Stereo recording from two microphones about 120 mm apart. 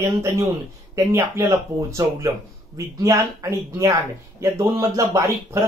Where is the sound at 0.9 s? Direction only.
25° right (ahead or behind).